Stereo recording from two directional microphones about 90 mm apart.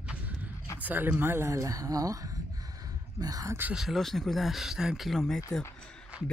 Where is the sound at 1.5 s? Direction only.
40° right (ahead or behind).